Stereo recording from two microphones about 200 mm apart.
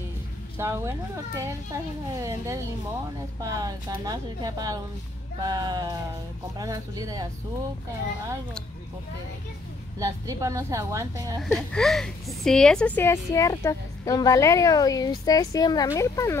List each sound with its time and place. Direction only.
0.6 s a child's voice: 15° right (ahead or behind)
9.9 s a child's voice: 15° right (ahead or behind)
11.4 s a woman's voice: centre (ahead or behind)